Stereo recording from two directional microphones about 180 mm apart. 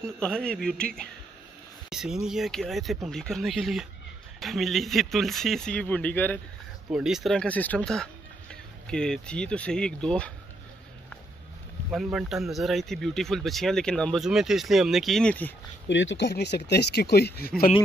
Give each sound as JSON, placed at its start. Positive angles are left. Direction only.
{"t": 0.0, "sound": "speech", "side_deg": 5}
{"t": 1.9, "sound": "speech", "side_deg": -5}
{"t": 6.9, "sound": "speech", "side_deg": -5}
{"t": 11.9, "sound": "speech", "side_deg": 0}
{"t": 15.9, "sound": "speech", "side_deg": 90}